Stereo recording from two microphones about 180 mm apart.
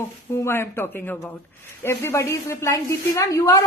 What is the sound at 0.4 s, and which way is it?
A woman's voice, 15° left (ahead or behind).